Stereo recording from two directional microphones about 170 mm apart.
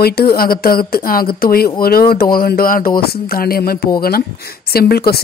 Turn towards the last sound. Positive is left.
turn(degrees=65)  # may be behind; listen again after turning